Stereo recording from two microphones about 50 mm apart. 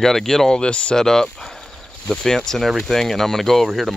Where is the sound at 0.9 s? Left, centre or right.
Centre.